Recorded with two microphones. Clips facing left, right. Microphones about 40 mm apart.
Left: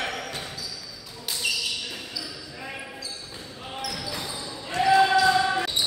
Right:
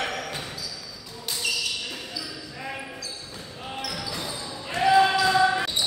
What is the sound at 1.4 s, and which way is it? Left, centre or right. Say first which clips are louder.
Basketball bounce: left 1 dB; centre.